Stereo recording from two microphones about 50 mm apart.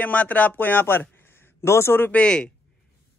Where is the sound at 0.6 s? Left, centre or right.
Left.